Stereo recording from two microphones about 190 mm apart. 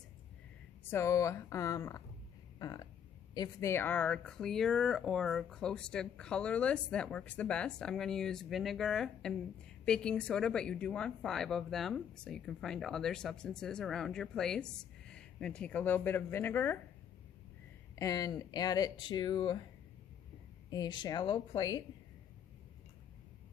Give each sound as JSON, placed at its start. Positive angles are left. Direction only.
{"t": 0.8, "sound": "a woman's voice", "side_deg": 15}
{"t": 17.9, "sound": "speech", "side_deg": 20}
{"t": 20.7, "sound": "speech", "side_deg": 20}